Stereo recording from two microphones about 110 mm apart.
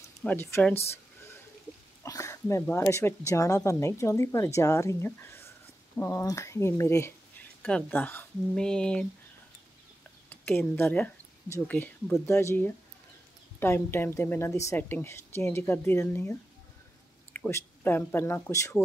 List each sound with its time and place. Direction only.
0.2 s speech: 15° left (ahead or behind)
2.0 s a sound: 30° left (ahead or behind)
2.6 s speech: 25° left (ahead or behind)
7.6 s speech: 10° left (ahead or behind)
10.3 s speech: 15° left (ahead or behind)
12.3 s speech: 25° left (ahead or behind)
17.5 s speech: 20° left (ahead or behind)